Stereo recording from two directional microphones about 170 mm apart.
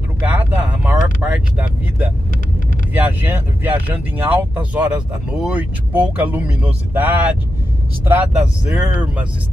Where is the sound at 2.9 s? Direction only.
10° right (ahead or behind).